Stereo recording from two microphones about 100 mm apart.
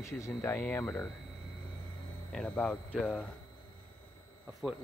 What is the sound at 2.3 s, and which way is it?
Speech, 10° left (ahead or behind).